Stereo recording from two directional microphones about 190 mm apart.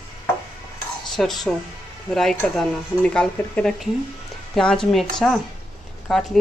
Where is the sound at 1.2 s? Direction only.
Centre (ahead or behind).